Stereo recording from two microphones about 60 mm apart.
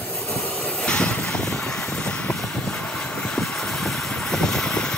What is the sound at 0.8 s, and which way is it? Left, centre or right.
Vehicle, centre.